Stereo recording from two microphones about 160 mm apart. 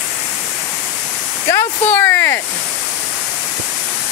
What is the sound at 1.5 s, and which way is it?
Speech, 15° left (ahead or behind).